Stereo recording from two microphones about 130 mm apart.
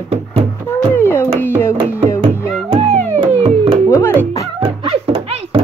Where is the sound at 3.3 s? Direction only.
50° right (ahead or behind).